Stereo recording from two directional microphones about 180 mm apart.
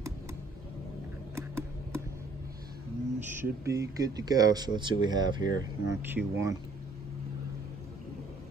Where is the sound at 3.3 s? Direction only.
15° right (ahead or behind).